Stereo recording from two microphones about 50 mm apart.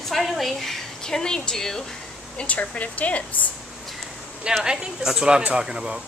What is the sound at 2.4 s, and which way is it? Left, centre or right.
A woman's voice, left.